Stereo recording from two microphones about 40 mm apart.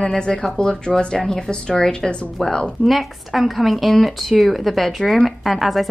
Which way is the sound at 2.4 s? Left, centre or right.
Centre.